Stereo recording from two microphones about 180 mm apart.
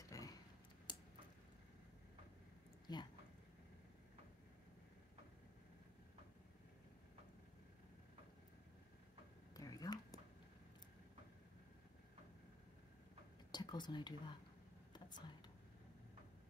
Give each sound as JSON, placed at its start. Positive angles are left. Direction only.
{"t": 0.0, "sound": "typing", "side_deg": 20}
{"t": 0.9, "sound": "a sound", "side_deg": 25}
{"t": 2.9, "sound": "speech", "side_deg": 25}
{"t": 9.6, "sound": "a sound", "side_deg": 20}
{"t": 13.5, "sound": "speech", "side_deg": 25}
{"t": 14.9, "sound": "whispering", "side_deg": 25}